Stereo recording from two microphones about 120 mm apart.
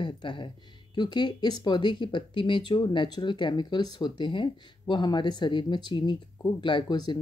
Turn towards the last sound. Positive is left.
turn(degrees=35)  # may be behind; listen again after turning